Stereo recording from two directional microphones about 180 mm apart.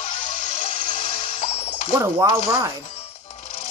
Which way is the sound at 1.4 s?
35° left (ahead or behind).